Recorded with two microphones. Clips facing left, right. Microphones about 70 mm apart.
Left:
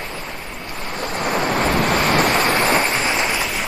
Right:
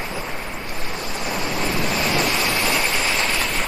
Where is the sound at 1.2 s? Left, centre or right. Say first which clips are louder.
Left 6 dB; left; by 3.4 s centre.